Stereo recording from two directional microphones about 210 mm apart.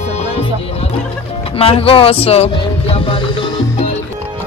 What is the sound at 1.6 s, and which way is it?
Speech, 25° left (ahead or behind).